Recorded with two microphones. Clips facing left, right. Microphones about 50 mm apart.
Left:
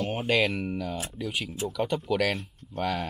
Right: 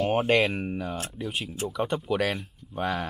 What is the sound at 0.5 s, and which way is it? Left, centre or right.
Speech, right.